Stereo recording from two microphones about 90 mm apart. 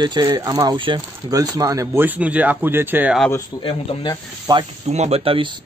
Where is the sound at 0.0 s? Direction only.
50° right (ahead or behind).